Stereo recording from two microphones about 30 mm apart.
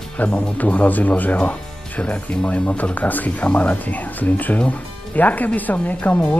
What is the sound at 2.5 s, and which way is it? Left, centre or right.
Speech, left.